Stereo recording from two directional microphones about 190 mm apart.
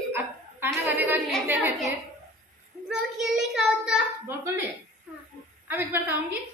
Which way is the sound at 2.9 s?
Centre (ahead or behind).